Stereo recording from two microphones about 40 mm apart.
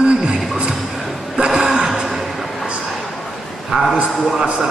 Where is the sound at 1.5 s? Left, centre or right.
Centre.